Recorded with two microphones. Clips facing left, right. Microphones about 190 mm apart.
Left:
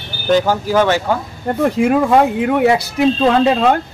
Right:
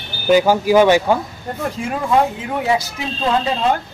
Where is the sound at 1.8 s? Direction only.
60° left (ahead or behind).